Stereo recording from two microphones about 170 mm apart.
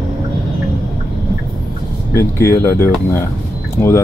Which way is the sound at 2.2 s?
15° left (ahead or behind).